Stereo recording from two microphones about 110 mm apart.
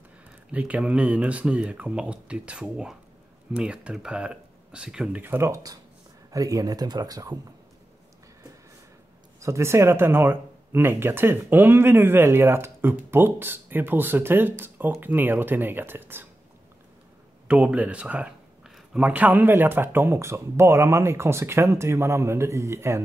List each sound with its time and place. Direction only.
0.5 s speech: 10° right (ahead or behind)
5.2 s speech: 20° right (ahead or behind)
5.5 s speech: 35° right (ahead or behind)
9.4 s speech: 25° right (ahead or behind)
17.5 s speech: 10° right (ahead or behind)